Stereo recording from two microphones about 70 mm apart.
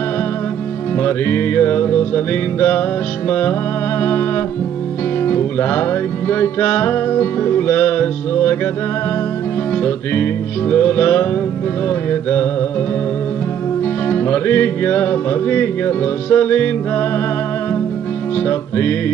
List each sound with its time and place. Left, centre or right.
0.9 s music: left
5.2 s music: left
9.8 s music: left
14.0 s music: left
18.5 s music: left